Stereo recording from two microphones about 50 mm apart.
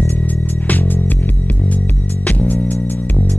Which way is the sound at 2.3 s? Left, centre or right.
Left.